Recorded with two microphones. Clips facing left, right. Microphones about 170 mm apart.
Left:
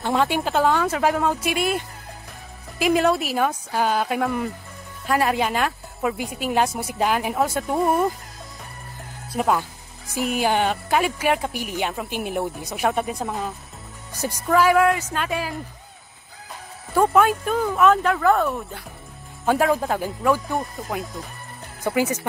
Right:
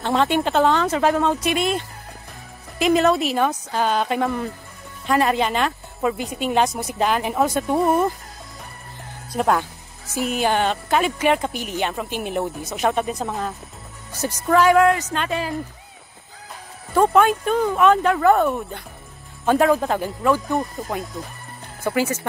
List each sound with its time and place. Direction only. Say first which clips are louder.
0.0 s speech: right 2 dB; 10° left (ahead or behind)
9.3 s speech: right 2 dB; 5° left (ahead or behind)
10.0 s speech: right 1 dB; 15° left (ahead or behind)
16.9 s speech: right 2 dB; 5° left (ahead or behind)
19.4 s speech: right 3 dB; 10° left (ahead or behind)
21.8 s speech: even; 15° left (ahead or behind)